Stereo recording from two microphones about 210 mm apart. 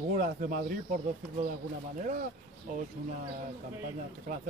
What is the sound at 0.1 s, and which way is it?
Speech, 40° right (ahead or behind).